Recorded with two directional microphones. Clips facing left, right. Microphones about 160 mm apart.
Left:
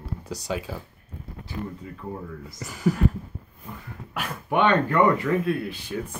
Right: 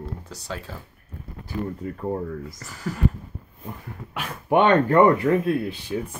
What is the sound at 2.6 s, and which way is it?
Speech, 15° left (ahead or behind).